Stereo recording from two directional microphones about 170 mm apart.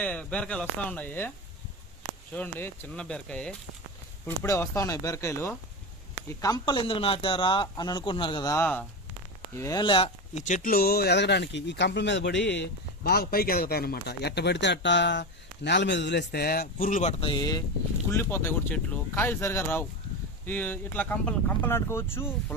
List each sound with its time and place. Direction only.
0.0 s speech: 10° left (ahead or behind)
2.3 s speech: 10° left (ahead or behind); by 10.4 s 30° left (ahead or behind)
10.4 s speech: 50° left (ahead or behind)
17.2 s speech: 25° left (ahead or behind)